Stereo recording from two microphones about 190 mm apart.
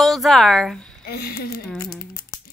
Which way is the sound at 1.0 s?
55° left (ahead or behind).